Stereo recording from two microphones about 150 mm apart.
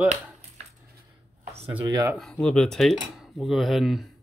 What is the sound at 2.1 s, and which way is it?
Speech, 5° left (ahead or behind).